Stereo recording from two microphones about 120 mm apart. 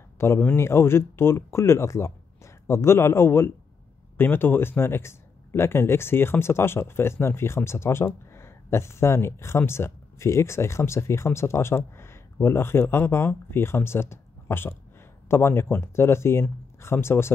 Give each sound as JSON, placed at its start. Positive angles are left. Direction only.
{"t": 0.2, "sound": "speech", "side_deg": 15}